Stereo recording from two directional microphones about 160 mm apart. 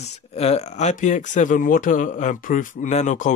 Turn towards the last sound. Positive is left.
turn(degrees=50)  # may be behind; listen again after turning